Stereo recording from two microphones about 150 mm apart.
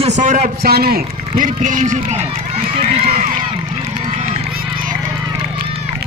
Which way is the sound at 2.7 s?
40° right (ahead or behind).